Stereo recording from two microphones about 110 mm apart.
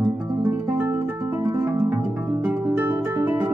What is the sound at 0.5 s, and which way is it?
Guitar, 20° right (ahead or behind).